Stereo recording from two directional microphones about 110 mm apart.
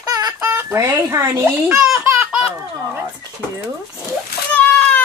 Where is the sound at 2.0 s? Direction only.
20° right (ahead or behind).